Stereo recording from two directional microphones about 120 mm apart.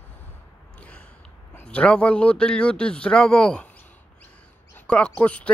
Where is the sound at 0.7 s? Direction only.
10° left (ahead or behind).